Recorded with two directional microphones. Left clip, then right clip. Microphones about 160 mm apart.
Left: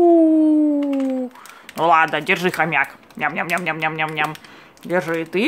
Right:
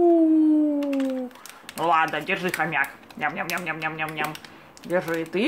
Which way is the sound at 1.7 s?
40° left (ahead or behind).